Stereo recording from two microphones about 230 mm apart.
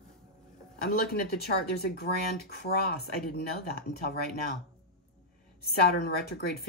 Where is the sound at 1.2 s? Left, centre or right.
Left.